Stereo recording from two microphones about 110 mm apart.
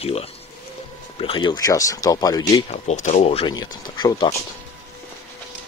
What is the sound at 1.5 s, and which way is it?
Speech, 30° left (ahead or behind).